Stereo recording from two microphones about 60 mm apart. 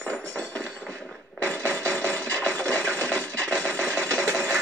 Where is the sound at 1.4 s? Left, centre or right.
Left.